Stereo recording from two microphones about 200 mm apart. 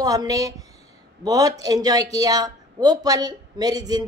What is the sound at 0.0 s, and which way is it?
Speech, 20° right (ahead or behind).